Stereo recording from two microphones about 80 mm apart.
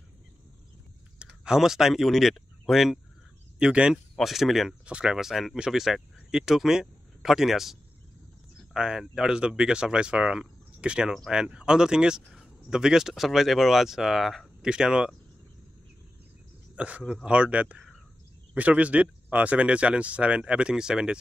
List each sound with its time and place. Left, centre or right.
1.2 s speech: centre
8.7 s speech: centre
16.7 s speech: centre